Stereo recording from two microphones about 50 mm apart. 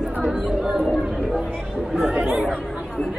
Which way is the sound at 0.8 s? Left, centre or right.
Centre.